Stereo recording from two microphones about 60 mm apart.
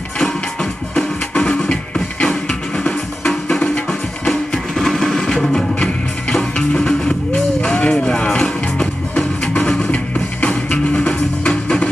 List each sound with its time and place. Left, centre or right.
0.2 s music: centre
3.3 s music: centre